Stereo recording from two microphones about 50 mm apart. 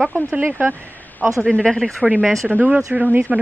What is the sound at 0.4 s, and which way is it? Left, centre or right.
Speech, right.